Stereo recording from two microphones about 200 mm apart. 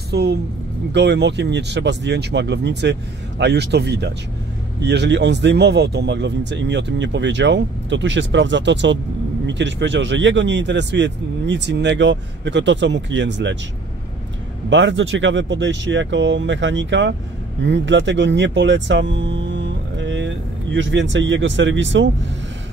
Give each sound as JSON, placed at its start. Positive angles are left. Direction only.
{"t": 0.1, "sound": "a woman's voice", "side_deg": -55}
{"t": 14.7, "sound": "speech", "side_deg": -65}